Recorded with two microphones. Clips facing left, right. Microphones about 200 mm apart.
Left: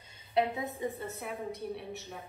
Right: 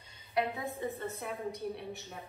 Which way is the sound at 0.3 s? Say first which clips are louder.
Left 3 dB; 25° left (ahead or behind).